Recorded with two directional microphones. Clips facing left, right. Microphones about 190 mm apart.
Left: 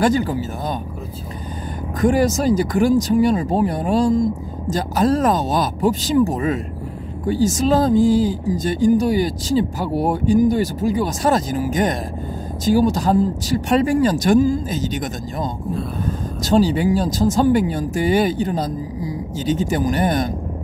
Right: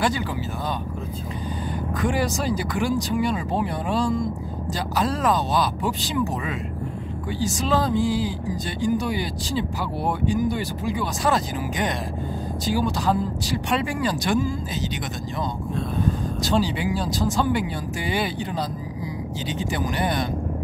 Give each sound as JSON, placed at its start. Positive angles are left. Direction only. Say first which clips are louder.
{"t": 0.0, "sound": "speech", "louder": "left 7 dB", "side_deg": 45}
{"t": 2.0, "sound": "speech", "louder": "left 8 dB", "side_deg": 45}
{"t": 16.4, "sound": "speech", "louder": "left 8 dB", "side_deg": 45}